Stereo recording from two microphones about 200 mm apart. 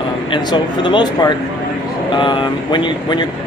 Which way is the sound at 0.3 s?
25° left (ahead or behind).